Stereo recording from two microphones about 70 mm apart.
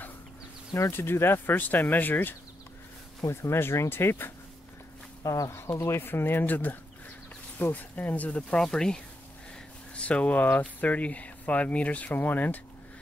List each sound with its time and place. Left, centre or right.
0.7 s speech: left
5.2 s speech: left
5.5 s speech: left; by 9.0 s centre
9.9 s speech: centre